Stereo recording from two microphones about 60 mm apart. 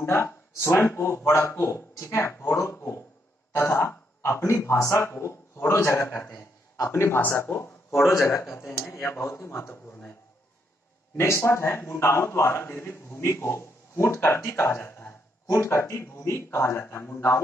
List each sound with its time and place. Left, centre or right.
0.0 s speech: left
6.0 s a man's voice: left
6.8 s speech: left
7.4 s a man's voice: left
8.1 s a man's voice: left
11.1 s speech: left
14.9 s a sound: left
15.5 s speech: left